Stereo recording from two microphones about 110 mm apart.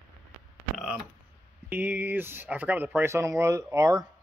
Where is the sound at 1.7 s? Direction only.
15° right (ahead or behind).